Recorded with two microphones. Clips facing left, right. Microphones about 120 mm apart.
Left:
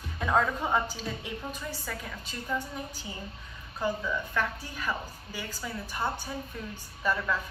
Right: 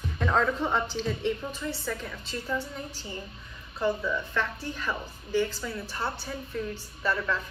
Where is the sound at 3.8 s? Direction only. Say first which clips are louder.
Right 3 dB; 10° left (ahead or behind).